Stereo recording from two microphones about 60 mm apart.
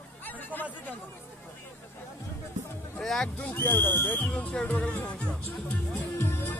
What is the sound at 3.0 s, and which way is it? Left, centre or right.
Music, centre.